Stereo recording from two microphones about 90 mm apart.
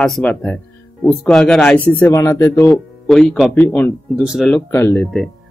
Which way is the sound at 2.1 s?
35° left (ahead or behind).